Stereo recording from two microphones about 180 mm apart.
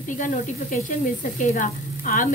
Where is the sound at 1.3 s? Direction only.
45° left (ahead or behind).